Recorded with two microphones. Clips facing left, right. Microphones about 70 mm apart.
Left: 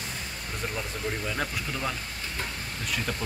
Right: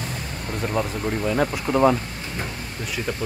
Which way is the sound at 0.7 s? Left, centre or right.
Right.